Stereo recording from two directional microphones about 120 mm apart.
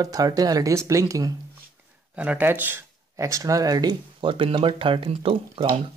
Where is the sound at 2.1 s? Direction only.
10° right (ahead or behind); by 5.7 s 50° right (ahead or behind).